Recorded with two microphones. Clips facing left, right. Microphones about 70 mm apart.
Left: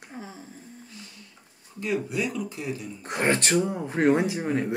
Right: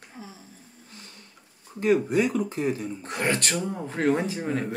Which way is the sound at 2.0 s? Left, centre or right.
Right.